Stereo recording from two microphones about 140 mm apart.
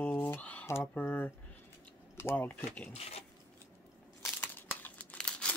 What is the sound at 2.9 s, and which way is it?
Speech, 50° left (ahead or behind).